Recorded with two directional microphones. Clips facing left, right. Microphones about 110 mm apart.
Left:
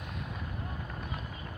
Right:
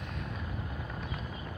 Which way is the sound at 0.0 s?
5° left (ahead or behind).